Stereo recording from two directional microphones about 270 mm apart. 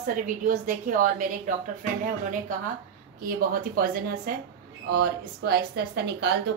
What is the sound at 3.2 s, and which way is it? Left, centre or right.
A woman's voice, right.